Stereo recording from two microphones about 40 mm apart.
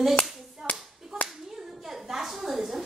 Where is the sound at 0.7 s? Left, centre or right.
Left.